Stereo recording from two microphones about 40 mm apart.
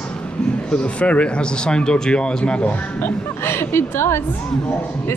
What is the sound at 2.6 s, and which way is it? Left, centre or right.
Speech, left.